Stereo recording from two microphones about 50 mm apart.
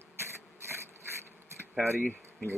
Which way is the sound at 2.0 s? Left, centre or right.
Left.